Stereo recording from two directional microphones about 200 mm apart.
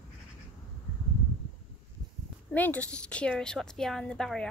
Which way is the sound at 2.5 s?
10° left (ahead or behind).